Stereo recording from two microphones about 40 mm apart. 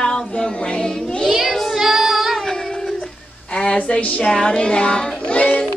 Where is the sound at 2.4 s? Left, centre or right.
Centre.